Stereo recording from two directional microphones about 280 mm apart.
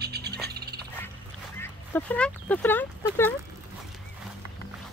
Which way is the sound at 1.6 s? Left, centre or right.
Centre.